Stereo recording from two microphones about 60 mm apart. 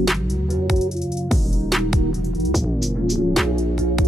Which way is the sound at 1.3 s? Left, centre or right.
Centre.